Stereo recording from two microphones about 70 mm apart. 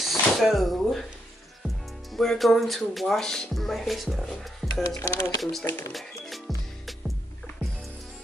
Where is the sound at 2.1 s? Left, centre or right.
Centre.